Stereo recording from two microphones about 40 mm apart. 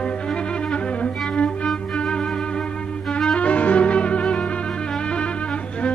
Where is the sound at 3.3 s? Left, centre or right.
Left.